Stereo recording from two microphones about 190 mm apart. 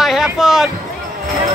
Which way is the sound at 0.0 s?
Centre (ahead or behind).